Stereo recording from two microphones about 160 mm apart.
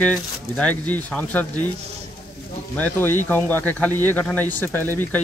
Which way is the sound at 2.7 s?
10° left (ahead or behind).